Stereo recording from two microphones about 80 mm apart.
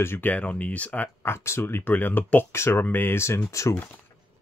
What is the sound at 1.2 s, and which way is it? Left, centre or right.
Speech, left.